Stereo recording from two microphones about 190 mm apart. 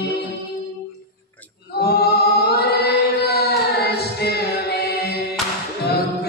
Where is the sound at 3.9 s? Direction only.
60° left (ahead or behind).